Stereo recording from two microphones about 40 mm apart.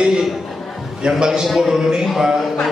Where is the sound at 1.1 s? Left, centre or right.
Centre.